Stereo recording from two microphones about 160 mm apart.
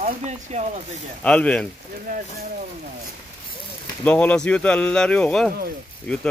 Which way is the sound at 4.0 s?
10° left (ahead or behind).